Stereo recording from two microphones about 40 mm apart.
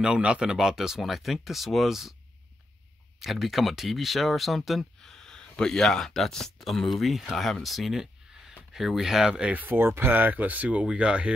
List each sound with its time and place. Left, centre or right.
0.2 s speech: right
0.6 s speech: centre
1.0 s speech: centre
3.2 s speech: centre
5.0 s speech: centre
9.5 s speech: right
9.8 s speech: right